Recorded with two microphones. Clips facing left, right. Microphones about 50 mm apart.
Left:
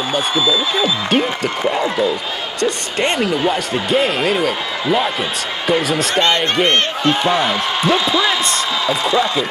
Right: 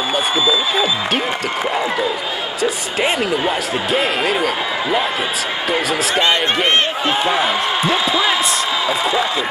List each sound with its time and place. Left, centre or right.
0.1 s speech: centre
5.7 s speech: centre